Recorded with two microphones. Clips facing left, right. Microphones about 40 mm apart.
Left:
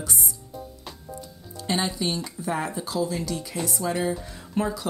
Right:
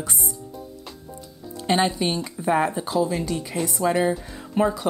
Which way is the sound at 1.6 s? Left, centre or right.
Right.